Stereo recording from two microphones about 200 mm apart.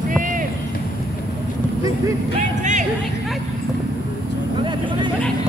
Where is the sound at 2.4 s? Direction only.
35° right (ahead or behind).